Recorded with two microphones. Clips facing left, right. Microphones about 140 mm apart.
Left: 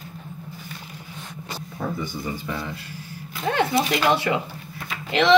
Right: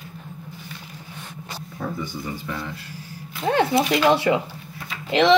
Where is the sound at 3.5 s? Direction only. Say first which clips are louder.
Right 3 dB; 25° right (ahead or behind).